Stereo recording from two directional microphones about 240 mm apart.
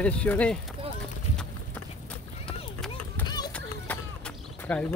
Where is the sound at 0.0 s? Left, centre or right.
Centre.